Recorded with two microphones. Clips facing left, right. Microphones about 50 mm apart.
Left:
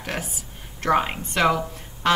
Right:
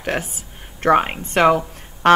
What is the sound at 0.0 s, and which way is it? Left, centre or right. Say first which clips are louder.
Speech: right 6 dB; right.